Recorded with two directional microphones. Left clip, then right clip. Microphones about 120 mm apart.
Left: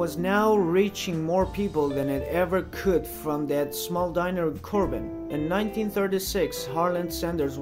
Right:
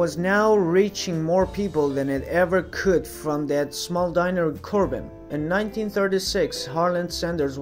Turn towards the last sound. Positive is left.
turn(degrees=-20)  # may be behind; listen again after turning